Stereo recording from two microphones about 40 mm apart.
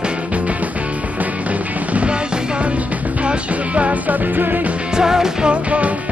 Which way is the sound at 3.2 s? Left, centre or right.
Right.